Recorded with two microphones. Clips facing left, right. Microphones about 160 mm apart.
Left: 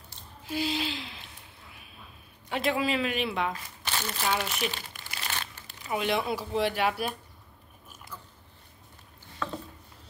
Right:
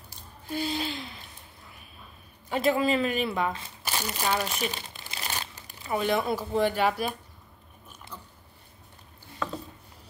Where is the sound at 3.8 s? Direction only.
10° right (ahead or behind).